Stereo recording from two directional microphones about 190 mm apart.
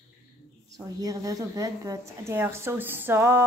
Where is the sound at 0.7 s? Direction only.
20° right (ahead or behind).